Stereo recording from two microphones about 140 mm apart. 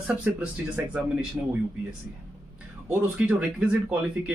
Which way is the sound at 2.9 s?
10° right (ahead or behind).